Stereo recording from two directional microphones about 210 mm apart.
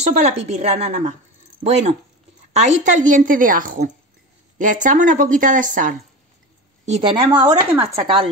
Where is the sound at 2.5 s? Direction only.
35° right (ahead or behind).